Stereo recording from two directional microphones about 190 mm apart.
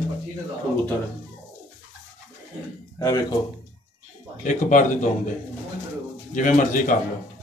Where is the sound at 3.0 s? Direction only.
20° left (ahead or behind).